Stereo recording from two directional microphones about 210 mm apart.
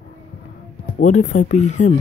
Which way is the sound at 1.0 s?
35° left (ahead or behind).